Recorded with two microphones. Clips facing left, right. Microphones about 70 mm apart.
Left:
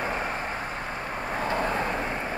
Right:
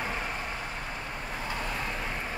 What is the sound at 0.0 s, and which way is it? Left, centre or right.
Vehicle, left.